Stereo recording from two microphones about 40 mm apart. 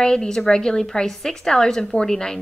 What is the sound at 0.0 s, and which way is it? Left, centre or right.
A woman's voice, centre.